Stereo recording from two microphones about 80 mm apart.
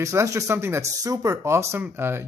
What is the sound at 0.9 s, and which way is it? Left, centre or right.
Speech, right.